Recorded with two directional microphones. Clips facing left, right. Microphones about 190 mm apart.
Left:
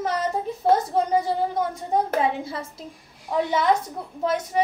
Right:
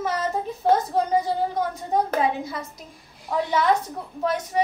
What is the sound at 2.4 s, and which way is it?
Speech, 30° left (ahead or behind).